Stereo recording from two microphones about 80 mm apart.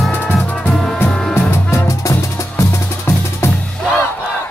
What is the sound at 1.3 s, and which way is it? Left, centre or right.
Music, left.